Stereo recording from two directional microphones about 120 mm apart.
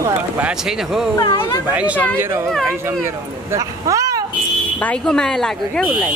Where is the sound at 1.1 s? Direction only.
40° left (ahead or behind).